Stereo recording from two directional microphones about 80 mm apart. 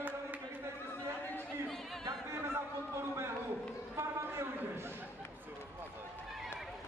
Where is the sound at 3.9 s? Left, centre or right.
Right.